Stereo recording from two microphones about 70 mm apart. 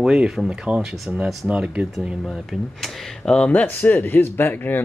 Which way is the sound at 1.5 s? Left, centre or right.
Centre.